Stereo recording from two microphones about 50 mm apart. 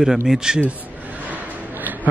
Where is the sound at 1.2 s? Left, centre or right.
Right.